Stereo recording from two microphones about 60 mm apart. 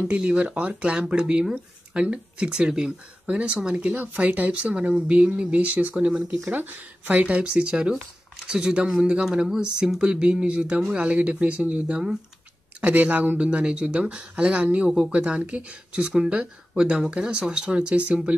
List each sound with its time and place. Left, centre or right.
0.1 s speech: right